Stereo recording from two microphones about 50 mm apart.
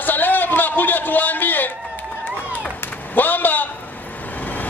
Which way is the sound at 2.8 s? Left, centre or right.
Left.